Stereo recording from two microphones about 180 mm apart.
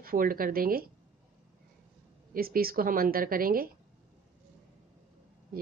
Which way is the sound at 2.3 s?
55° right (ahead or behind).